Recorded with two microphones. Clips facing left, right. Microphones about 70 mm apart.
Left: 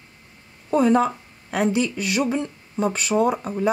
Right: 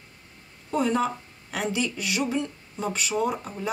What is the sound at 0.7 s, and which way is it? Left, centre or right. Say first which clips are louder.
Speech: left 6 dB; left.